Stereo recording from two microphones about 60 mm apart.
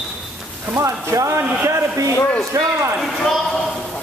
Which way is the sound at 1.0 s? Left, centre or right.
Right.